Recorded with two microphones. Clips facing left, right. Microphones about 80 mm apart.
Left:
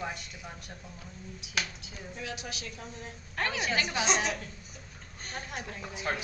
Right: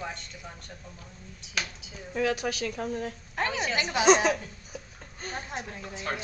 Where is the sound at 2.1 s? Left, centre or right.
Right.